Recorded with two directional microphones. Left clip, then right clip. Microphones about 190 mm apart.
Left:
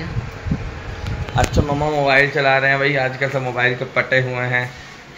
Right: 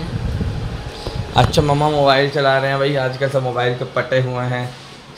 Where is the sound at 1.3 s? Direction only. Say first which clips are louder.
Right 4 dB; 60° right (ahead or behind).